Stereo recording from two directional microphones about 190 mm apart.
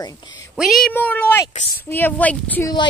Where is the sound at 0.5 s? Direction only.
Centre (ahead or behind).